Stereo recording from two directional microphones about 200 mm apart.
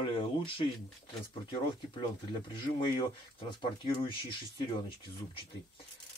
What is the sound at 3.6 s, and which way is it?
Speech, 25° left (ahead or behind).